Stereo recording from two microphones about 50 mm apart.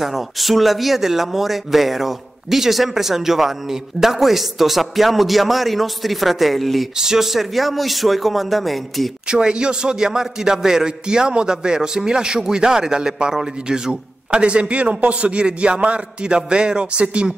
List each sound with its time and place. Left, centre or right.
0.0 s speech: centre
7.0 s speech: centre
9.3 s a man's voice: centre